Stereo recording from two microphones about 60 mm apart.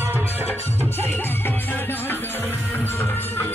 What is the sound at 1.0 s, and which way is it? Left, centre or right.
Music, left.